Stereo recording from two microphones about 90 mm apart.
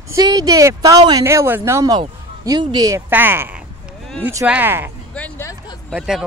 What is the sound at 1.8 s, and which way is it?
A man's voice, 45° right (ahead or behind).